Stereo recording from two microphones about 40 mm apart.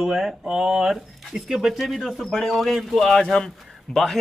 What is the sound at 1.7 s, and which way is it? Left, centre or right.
Speech, centre.